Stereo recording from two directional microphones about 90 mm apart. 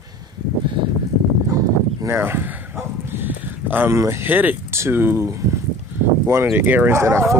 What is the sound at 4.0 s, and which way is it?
Speech, 30° right (ahead or behind).